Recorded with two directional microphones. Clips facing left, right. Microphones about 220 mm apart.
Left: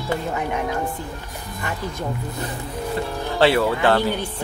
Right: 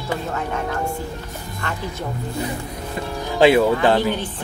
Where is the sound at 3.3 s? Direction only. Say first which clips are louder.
Right 4 dB; 15° right (ahead or behind).